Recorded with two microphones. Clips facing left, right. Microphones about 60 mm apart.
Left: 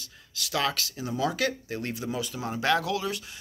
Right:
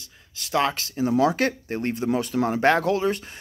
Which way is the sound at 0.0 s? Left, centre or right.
Right.